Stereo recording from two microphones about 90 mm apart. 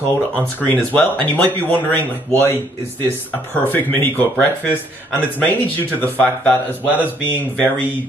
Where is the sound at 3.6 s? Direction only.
25° left (ahead or behind).